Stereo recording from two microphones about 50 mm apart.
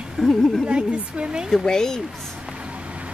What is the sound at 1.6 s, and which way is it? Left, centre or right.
Speech, centre.